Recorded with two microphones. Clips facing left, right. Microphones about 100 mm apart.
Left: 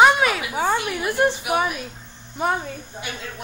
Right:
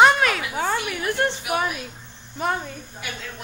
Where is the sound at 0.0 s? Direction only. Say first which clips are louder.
Left 1 dB; 5° left (ahead or behind).